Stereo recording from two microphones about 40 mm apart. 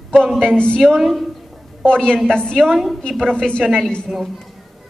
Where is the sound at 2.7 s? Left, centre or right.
Centre.